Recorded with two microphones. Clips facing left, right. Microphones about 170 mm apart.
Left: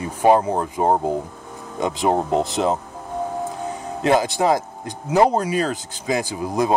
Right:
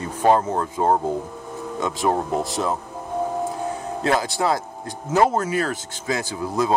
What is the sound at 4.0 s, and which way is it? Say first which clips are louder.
Speech: left 4 dB; 20° left (ahead or behind).